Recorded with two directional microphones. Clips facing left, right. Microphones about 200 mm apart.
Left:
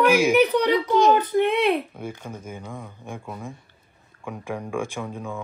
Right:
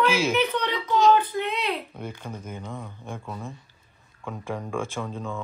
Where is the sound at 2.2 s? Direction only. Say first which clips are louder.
Left 1 dB; 10° left (ahead or behind).